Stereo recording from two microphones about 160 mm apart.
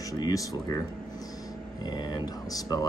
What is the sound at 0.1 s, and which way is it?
Speech, 20° left (ahead or behind).